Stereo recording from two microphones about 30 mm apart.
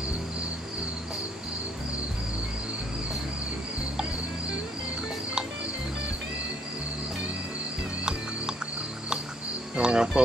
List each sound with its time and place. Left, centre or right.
9.8 s speech: right